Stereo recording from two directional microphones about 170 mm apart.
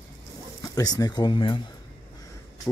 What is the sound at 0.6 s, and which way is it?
Speech, 20° left (ahead or behind).